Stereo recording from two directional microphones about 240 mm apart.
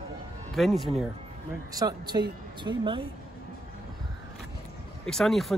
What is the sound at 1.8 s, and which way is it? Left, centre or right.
Speech, centre.